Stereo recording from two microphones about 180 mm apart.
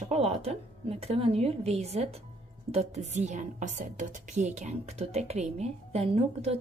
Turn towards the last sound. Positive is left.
turn(degrees=-35)  # may be behind; listen again after turning